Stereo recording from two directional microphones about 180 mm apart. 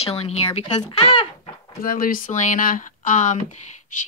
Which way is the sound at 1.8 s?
50° left (ahead or behind).